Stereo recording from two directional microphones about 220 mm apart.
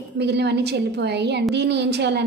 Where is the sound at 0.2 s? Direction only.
50° right (ahead or behind).